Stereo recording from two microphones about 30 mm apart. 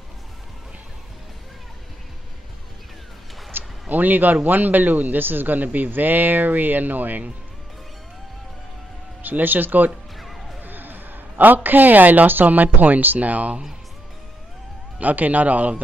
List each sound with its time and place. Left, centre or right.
3.9 s a man's voice: right
9.2 s speech: right
10.1 s music: centre
10.6 s a man's voice: right
15.0 s a man's voice: right